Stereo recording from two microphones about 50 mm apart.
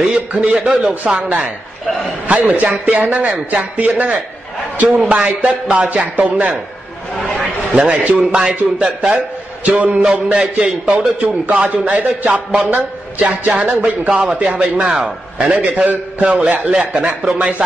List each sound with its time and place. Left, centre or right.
0.1 s a man's voice: right
7.7 s a man's voice: right
13.5 s a man's voice: right